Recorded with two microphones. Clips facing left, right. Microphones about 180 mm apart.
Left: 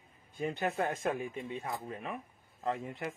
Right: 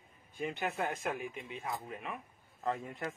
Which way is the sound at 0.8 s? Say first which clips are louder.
Left 3 dB; 35° left (ahead or behind).